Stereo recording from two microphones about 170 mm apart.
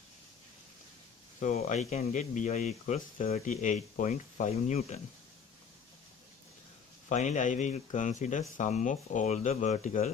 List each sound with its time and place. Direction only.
1.4 s speech: 45° left (ahead or behind)
7.1 s speech: 45° left (ahead or behind)